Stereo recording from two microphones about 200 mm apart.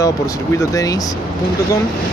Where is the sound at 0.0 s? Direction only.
15° left (ahead or behind).